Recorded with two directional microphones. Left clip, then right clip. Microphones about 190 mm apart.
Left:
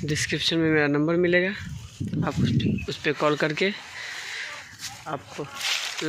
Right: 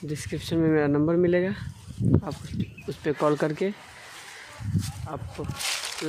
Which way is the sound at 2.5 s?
15° right (ahead or behind).